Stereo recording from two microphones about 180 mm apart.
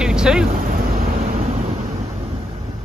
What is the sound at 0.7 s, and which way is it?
Vehicle, 45° right (ahead or behind).